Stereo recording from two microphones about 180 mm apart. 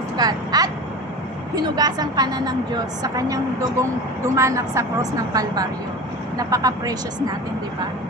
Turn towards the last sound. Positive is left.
turn(degrees=-20)  # may be behind; listen again after turning